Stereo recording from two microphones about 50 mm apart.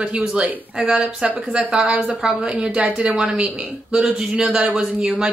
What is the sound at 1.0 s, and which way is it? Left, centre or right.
A woman's voice, right.